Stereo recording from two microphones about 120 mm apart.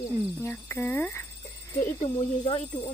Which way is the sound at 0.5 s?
20° left (ahead or behind).